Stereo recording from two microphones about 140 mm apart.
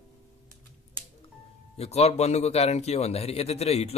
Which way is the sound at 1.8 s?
50° left (ahead or behind).